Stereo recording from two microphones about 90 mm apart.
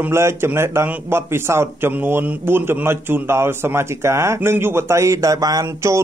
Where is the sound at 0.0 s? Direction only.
30° right (ahead or behind).